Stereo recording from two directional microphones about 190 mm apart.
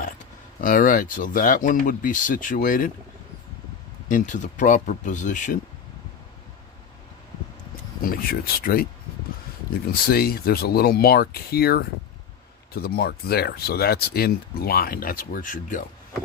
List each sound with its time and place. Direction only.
0.6 s speech: 45° left (ahead or behind)
4.1 s speech: 40° left (ahead or behind)
8.0 s speech: 50° left (ahead or behind)
10.0 s speech: 50° left (ahead or behind)